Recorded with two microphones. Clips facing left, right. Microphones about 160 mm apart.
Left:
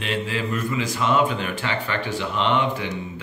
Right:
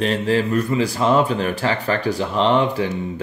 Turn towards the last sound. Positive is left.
turn(degrees=-35)  # may be behind; listen again after turning